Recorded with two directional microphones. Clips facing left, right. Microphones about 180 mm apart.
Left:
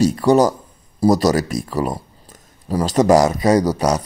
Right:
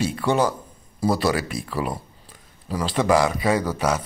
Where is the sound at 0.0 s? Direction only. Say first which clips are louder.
Left 7 dB; 40° left (ahead or behind).